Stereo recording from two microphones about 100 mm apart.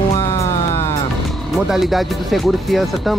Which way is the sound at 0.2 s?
30° left (ahead or behind).